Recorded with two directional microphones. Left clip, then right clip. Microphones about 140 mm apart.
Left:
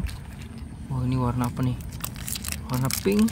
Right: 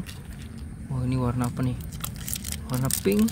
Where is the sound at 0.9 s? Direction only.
Centre (ahead or behind).